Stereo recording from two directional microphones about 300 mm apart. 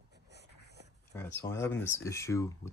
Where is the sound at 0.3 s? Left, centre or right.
Right.